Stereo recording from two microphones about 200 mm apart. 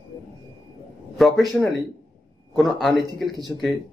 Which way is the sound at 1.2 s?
Centre (ahead or behind).